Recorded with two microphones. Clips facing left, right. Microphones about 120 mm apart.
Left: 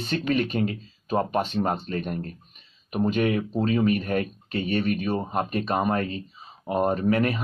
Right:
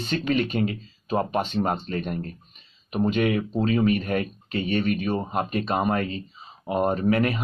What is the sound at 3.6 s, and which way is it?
Speech, 30° left (ahead or behind).